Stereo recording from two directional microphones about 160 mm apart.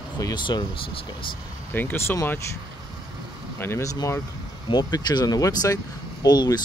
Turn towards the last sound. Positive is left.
turn(degrees=25)  # may be behind; listen again after turning